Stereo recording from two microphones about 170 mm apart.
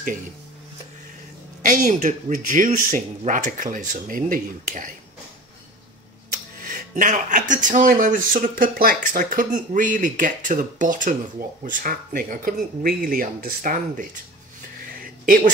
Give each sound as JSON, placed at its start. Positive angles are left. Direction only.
{"t": 1.6, "sound": "speech", "side_deg": -50}
{"t": 6.6, "sound": "speech", "side_deg": -50}